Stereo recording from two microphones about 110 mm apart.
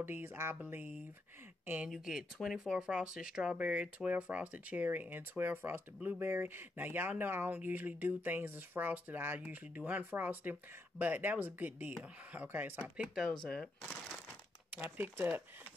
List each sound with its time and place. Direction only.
0.0 s speech: 20° right (ahead or behind)
1.9 s speech: 5° right (ahead or behind)
14.7 s speech: 20° right (ahead or behind)